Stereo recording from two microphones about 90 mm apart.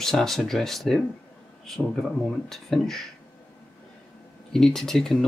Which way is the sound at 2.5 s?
5° left (ahead or behind).